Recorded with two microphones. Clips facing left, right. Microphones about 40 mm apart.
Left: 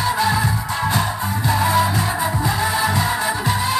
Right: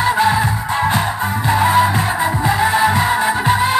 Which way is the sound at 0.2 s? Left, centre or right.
Right.